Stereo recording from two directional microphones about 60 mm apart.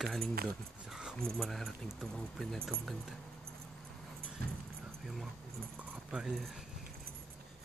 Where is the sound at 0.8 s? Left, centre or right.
Centre.